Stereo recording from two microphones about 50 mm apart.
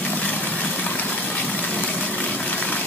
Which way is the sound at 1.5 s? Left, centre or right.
Left.